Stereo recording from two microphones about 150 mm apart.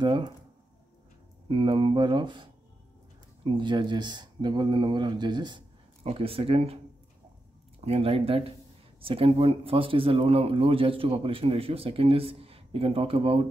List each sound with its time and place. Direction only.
0.0 s speech: 30° right (ahead or behind)
1.5 s speech: 35° right (ahead or behind)
7.8 s speech: 40° right (ahead or behind)